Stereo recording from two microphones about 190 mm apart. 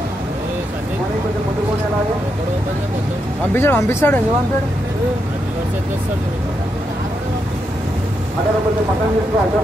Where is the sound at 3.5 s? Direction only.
10° left (ahead or behind).